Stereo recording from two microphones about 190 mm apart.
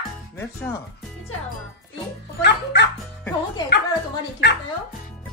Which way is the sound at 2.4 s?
65° left (ahead or behind).